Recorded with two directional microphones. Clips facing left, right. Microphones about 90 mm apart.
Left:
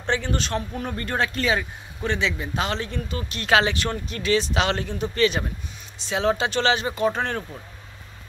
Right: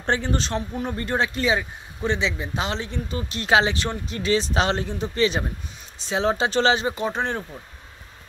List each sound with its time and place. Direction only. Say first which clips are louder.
0.0 s speech: right 1 dB; 35° right (ahead or behind); by 7.4 s 20° right (ahead or behind)